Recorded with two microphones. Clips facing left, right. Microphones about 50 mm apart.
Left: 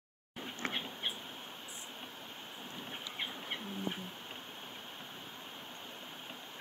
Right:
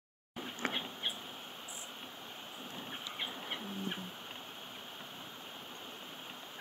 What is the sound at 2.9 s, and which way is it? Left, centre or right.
Livestock, centre.